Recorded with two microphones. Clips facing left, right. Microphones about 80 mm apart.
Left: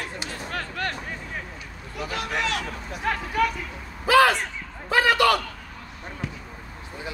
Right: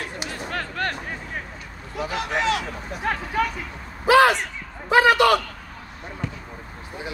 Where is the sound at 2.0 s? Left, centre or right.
Right.